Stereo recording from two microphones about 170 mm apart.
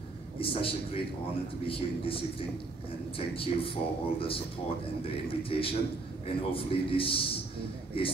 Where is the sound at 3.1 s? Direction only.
30° left (ahead or behind).